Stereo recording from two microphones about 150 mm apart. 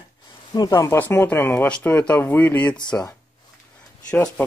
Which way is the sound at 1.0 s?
15° left (ahead or behind).